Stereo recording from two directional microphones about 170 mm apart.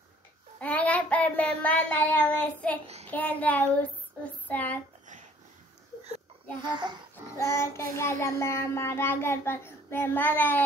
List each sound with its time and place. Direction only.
0.6 s child singing: 10° left (ahead or behind)
3.1 s a child's voice: 10° left (ahead or behind)
6.6 s a child's voice: 25° right (ahead or behind)
7.5 s a child's voice: 15° left (ahead or behind)